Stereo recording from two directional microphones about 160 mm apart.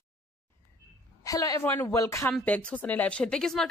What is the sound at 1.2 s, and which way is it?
A woman's voice, 20° left (ahead or behind).